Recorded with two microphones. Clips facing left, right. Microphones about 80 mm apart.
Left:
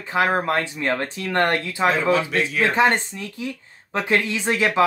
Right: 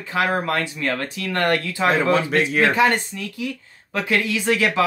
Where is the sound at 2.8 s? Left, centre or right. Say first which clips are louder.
Even; left.